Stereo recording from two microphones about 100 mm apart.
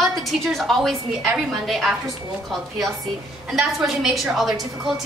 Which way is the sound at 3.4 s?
5° right (ahead or behind).